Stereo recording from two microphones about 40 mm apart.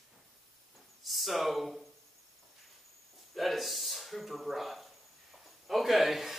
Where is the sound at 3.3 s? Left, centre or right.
Centre.